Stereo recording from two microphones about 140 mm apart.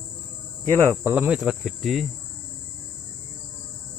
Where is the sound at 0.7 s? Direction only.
20° right (ahead or behind).